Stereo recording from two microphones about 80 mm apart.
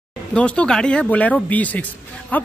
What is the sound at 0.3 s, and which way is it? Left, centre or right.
Speech, centre.